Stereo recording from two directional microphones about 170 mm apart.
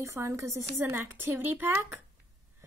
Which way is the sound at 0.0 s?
15° right (ahead or behind).